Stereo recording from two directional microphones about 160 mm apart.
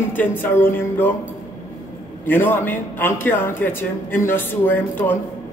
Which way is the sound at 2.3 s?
10° left (ahead or behind).